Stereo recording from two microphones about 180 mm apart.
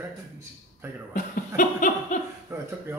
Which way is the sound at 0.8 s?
15° right (ahead or behind).